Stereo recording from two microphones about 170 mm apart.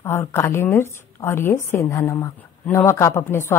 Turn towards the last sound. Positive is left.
turn(degrees=15)  # may be behind; listen again after turning